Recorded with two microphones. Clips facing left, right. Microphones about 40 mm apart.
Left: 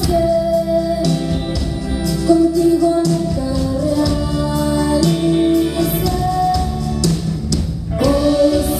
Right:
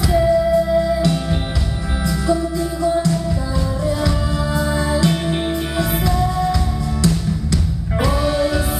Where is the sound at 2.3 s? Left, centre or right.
Right.